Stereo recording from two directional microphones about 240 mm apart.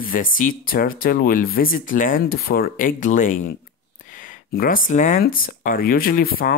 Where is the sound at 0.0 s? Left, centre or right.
Left.